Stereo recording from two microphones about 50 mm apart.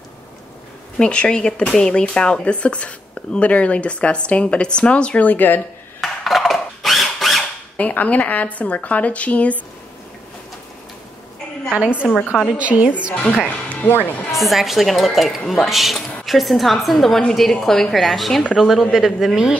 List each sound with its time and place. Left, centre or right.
0.9 s speech: left
5.2 s a woman's voice: left
5.9 s a sound: centre
7.7 s speech: left
11.7 s a woman's voice: centre
13.1 s speech: left
13.8 s a woman's voice: left
14.3 s a woman's voice: centre